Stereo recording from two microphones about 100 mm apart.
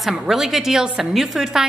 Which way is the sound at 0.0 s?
5° right (ahead or behind).